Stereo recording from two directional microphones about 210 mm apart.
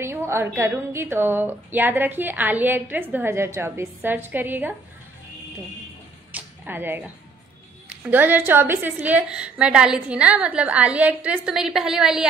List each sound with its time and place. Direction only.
0.0 s a woman's voice: 10° right (ahead or behind)
6.3 s a woman's voice: 10° right (ahead or behind)